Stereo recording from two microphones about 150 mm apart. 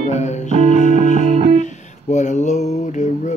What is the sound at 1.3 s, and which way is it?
Music, 40° right (ahead or behind).